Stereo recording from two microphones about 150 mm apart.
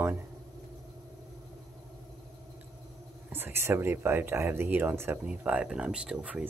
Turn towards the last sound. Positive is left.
turn(degrees=-5)  # may be behind; listen again after turning